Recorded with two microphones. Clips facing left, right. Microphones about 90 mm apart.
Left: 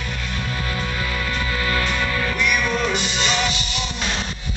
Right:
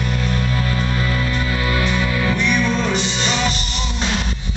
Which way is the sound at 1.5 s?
15° right (ahead or behind).